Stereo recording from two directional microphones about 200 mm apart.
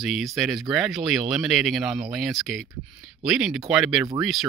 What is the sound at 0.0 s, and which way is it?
Speech, centre (ahead or behind).